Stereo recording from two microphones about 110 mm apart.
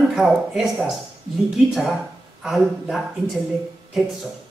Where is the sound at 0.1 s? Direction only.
Centre (ahead or behind).